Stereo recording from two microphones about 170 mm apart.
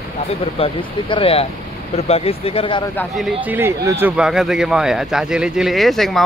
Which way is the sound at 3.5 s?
15° right (ahead or behind).